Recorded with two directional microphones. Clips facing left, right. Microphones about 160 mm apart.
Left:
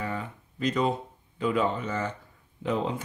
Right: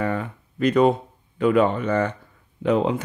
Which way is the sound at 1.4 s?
65° right (ahead or behind).